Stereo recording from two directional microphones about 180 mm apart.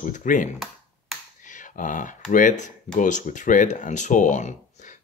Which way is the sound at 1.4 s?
45° left (ahead or behind).